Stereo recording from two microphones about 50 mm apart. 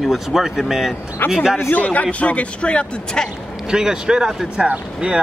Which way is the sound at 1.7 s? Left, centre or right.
Left.